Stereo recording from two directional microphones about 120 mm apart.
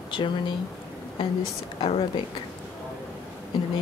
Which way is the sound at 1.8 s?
50° left (ahead or behind).